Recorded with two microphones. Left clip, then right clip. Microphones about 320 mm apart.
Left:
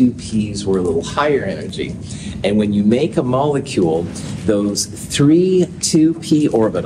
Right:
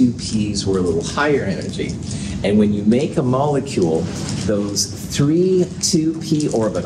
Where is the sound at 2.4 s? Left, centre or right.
Left.